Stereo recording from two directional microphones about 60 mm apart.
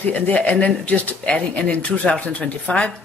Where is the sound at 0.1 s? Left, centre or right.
Left.